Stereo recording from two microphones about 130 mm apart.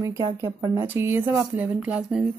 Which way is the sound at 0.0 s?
25° right (ahead or behind).